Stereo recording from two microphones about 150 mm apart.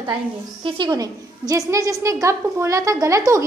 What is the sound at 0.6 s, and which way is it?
A woman's voice, 30° right (ahead or behind).